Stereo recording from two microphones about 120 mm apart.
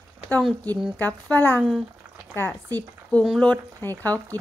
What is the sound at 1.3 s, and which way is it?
Speech, 15° left (ahead or behind).